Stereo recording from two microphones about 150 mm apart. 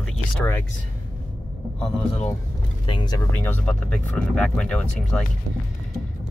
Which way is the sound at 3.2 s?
15° left (ahead or behind).